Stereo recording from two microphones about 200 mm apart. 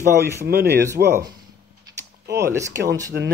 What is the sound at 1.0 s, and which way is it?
Speech, 50° right (ahead or behind).